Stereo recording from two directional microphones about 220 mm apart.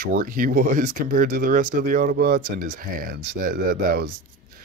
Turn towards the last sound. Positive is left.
turn(degrees=-40)  # may be behind; listen again after turning